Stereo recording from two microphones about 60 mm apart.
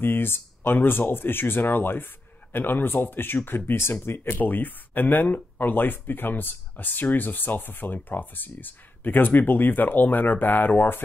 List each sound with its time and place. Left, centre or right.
0.0 s speech: left